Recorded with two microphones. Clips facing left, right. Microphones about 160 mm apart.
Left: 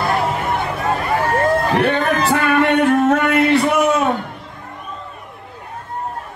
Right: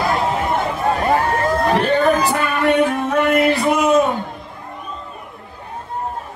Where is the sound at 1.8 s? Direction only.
65° left (ahead or behind).